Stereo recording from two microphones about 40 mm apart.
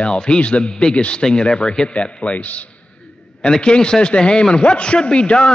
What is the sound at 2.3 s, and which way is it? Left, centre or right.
Speech, left.